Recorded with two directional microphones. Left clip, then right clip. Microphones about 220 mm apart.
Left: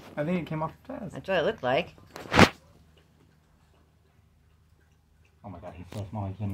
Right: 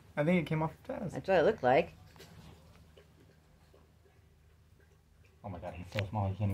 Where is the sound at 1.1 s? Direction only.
Centre (ahead or behind).